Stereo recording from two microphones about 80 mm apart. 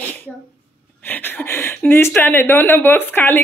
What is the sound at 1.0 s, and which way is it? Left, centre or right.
Speech, left.